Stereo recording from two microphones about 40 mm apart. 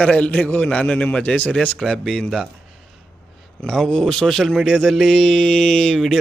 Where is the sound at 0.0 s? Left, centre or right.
Left.